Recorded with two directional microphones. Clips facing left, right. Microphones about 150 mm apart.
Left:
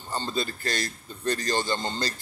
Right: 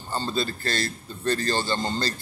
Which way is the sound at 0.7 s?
15° left (ahead or behind).